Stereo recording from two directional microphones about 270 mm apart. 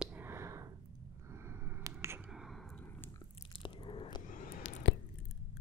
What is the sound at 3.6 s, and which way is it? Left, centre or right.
Biting, centre.